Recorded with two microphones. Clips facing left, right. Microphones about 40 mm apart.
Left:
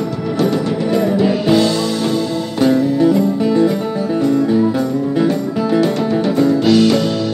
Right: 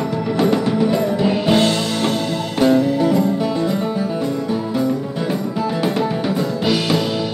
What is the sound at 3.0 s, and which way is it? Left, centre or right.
Music, centre.